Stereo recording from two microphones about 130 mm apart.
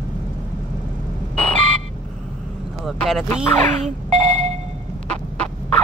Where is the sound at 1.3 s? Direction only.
10° left (ahead or behind).